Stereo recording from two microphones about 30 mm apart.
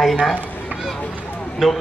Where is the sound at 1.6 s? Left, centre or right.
Centre.